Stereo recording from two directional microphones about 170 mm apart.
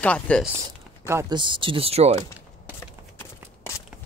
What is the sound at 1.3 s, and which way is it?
Speech, 30° right (ahead or behind).